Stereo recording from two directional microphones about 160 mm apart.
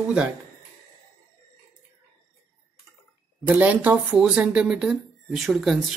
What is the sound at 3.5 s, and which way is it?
Speech, 10° right (ahead or behind).